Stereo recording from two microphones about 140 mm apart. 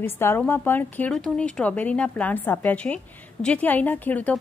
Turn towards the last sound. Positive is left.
turn(degrees=10)  # may be behind; listen again after turning